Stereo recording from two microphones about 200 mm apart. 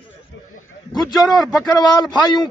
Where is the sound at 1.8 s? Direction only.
20° left (ahead or behind).